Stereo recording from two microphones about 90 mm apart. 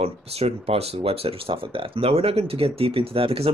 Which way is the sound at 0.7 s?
90° right.